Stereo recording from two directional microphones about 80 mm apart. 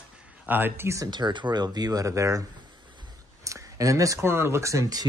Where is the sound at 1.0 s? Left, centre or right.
Right.